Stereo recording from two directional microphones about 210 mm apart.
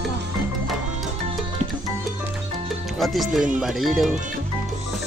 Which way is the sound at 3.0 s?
Centre (ahead or behind).